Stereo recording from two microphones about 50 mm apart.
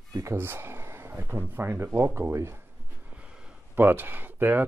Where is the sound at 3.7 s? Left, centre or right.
Right.